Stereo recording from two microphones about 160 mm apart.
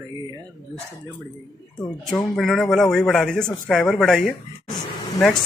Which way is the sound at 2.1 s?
Centre (ahead or behind).